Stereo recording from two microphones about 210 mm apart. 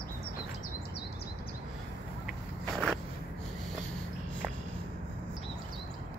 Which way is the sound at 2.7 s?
Centre (ahead or behind).